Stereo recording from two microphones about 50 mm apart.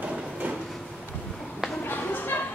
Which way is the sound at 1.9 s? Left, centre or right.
Left.